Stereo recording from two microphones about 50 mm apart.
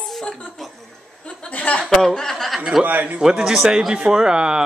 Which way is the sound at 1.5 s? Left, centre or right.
Left.